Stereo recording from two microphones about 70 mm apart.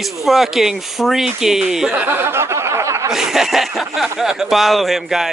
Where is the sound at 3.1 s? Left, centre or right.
Centre.